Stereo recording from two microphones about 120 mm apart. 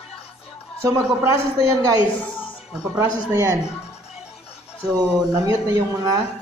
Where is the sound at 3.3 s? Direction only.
30° right (ahead or behind).